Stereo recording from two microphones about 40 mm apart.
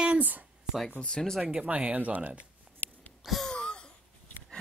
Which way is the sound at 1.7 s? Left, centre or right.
Right.